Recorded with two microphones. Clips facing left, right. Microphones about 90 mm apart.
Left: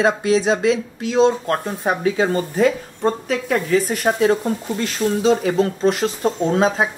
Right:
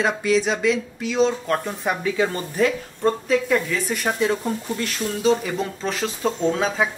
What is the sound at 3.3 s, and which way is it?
A woman's voice, 45° left (ahead or behind).